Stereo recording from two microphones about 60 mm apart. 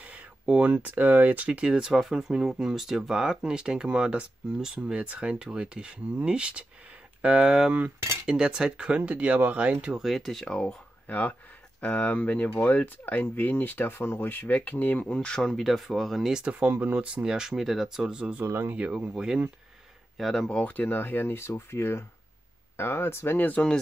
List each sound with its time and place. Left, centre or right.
0.0 s speech: right
5.0 s speech: right
9.9 s speech: centre
10.4 s speech: centre
11.1 s speech: left
15.1 s speech: centre
15.6 s speech: centre
16.3 s speech: right
18.4 s speech: right
18.8 s speech: centre
20.2 s speech: centre
20.4 s speech: left